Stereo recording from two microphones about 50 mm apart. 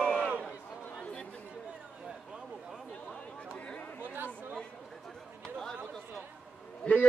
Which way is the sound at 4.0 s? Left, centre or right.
Right.